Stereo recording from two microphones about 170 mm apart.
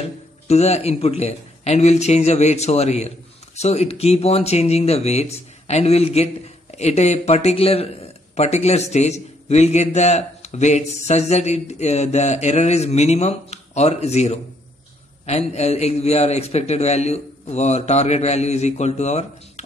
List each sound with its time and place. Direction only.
0.5 s a man's voice: 40° left (ahead or behind)